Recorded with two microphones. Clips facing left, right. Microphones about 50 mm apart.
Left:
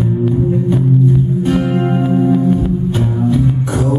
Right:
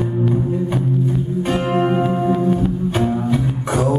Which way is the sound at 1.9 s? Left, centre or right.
Centre.